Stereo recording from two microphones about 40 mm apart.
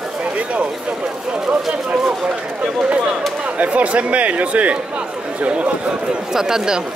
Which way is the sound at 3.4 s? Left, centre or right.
Right.